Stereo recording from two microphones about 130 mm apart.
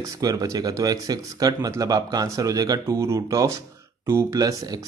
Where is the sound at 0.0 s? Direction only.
25° right (ahead or behind).